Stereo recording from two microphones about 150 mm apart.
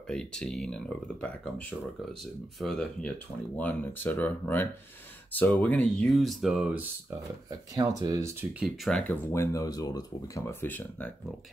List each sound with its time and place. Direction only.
0.1 s speech: 5° left (ahead or behind)
2.6 s speech: 5° left (ahead or behind)
7.4 s speech: 25° right (ahead or behind)
8.5 s speech: centre (ahead or behind)
9.0 s speech: 10° left (ahead or behind)